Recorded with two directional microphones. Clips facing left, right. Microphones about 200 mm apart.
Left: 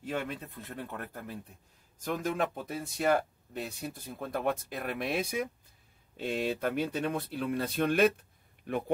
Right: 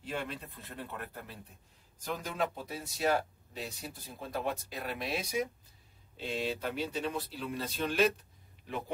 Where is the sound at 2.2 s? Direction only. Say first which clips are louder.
Left 3 dB; 50° left (ahead or behind).